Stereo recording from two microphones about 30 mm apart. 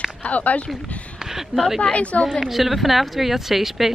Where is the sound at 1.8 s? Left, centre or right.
Left.